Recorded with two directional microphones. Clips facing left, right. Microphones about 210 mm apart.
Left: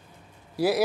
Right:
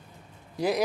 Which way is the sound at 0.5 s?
5° left (ahead or behind).